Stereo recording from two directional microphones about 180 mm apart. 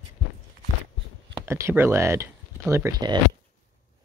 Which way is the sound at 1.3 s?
15° right (ahead or behind).